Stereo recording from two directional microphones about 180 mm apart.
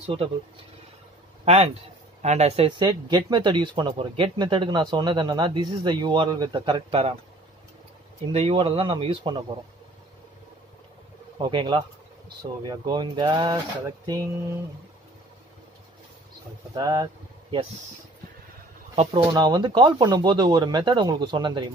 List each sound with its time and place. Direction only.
0.0 s speech: 30° right (ahead or behind)
1.4 s a man's voice: 35° right (ahead or behind)
8.3 s speech: 30° right (ahead or behind)
11.3 s speech: 25° right (ahead or behind)
16.7 s speech: 20° right (ahead or behind)
18.9 s speech: 25° right (ahead or behind)